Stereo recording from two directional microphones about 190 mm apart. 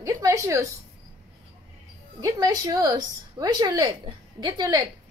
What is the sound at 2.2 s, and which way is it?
Speech, 20° right (ahead or behind).